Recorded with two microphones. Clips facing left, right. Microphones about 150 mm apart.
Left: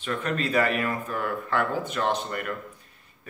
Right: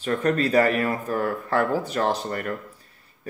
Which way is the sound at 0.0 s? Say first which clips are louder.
Right 6 dB; 40° right (ahead or behind).